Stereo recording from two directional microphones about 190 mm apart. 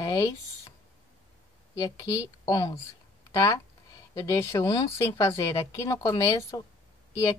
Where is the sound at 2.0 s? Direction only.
20° left (ahead or behind).